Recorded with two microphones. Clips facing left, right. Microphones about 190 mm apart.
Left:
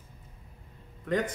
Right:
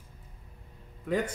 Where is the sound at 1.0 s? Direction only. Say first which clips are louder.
Even; 10° right (ahead or behind).